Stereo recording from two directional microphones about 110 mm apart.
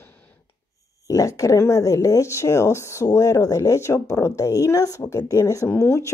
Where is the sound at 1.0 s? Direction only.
30° left (ahead or behind).